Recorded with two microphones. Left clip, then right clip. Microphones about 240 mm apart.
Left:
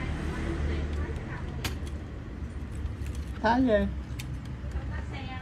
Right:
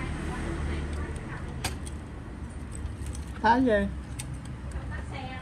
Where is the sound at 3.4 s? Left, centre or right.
Left.